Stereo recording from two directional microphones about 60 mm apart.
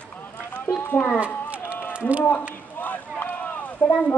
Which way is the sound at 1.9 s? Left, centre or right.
Right.